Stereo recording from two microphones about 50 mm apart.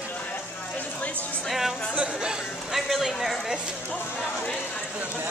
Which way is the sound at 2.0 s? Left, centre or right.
Centre.